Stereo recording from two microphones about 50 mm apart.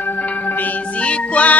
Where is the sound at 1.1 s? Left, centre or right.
Left.